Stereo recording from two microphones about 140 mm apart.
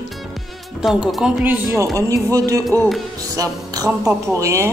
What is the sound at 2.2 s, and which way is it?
Music, 25° right (ahead or behind).